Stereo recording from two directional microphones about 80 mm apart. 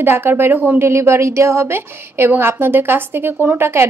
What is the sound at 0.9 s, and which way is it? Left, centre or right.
A woman's voice, right.